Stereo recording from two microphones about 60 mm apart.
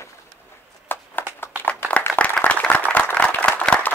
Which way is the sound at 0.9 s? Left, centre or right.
Left.